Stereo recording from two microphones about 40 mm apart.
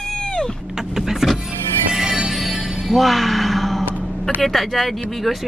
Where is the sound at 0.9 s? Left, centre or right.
Centre.